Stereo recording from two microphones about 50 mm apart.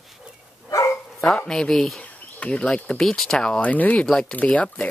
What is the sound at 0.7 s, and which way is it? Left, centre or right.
Dog, left.